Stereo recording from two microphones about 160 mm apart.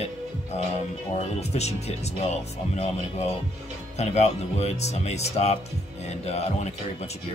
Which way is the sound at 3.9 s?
40° left (ahead or behind).